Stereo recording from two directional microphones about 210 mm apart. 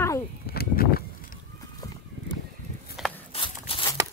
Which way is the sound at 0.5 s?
45° left (ahead or behind).